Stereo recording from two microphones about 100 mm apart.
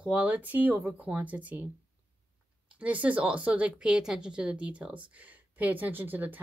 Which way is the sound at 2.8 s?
15° right (ahead or behind).